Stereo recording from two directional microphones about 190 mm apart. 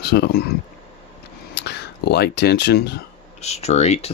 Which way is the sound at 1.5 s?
60° left (ahead or behind).